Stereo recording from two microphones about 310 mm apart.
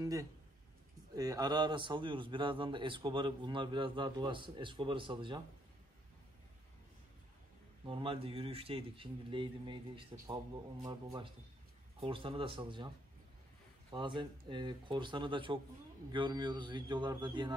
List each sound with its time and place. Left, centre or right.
0.0 s a man's voice: centre
7.8 s a man's voice: centre
12.0 s a man's voice: centre